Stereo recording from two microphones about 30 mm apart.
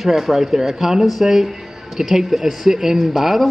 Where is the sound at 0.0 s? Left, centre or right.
Centre.